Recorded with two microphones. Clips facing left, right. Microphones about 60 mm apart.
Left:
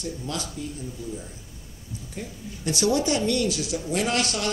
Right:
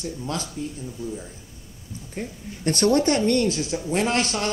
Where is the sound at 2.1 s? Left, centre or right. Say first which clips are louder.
Right 4 dB; right.